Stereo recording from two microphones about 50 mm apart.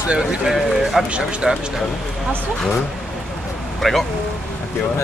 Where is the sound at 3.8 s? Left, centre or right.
Centre.